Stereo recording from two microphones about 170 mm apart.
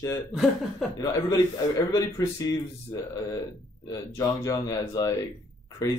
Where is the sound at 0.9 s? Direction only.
20° left (ahead or behind).